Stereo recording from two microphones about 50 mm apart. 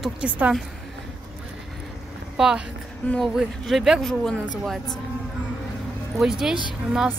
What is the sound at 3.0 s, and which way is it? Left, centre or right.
Speech, left.